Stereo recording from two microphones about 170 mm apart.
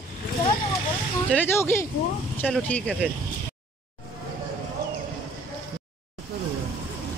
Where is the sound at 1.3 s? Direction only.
10° left (ahead or behind).